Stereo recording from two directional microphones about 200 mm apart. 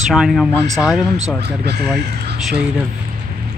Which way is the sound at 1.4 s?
55° right (ahead or behind).